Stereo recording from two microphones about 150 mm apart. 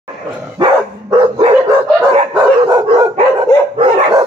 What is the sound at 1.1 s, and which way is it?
Dog, 25° right (ahead or behind).